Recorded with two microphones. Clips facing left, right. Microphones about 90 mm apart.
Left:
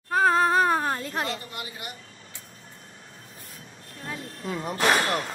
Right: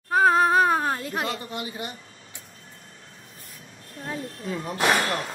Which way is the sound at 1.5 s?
25° right (ahead or behind).